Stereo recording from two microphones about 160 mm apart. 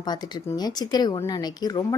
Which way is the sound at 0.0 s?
25° left (ahead or behind).